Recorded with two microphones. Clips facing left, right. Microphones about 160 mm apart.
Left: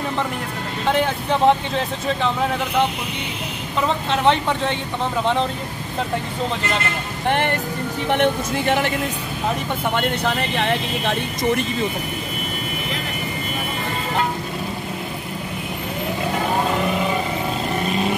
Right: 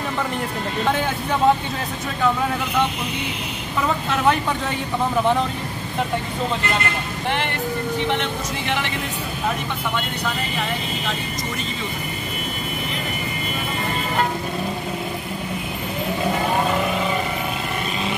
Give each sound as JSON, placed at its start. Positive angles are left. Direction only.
{"t": 7.2, "sound": "speech", "side_deg": 50}
{"t": 10.5, "sound": "speech", "side_deg": 75}